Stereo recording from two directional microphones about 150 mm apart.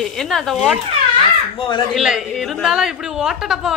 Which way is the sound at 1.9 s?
5° right (ahead or behind).